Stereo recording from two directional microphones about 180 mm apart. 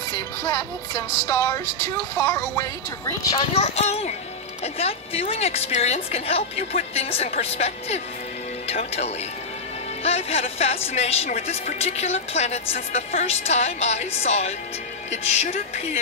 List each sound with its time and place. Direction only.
0.4 s speech: 15° left (ahead or behind)
3.3 s a woman's voice: 35° left (ahead or behind)